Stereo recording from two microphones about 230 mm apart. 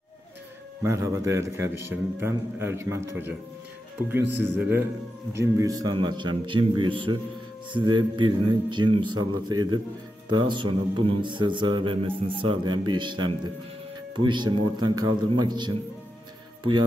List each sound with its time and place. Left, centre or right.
0.8 s a man's voice: centre